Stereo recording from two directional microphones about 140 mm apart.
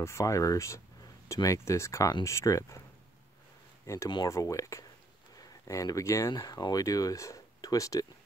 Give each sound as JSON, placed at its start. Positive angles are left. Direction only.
{"t": 0.0, "sound": "speech", "side_deg": 20}
{"t": 3.8, "sound": "speech", "side_deg": 20}